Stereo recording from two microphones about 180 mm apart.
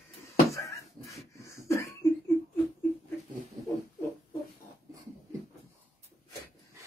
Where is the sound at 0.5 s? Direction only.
15° left (ahead or behind).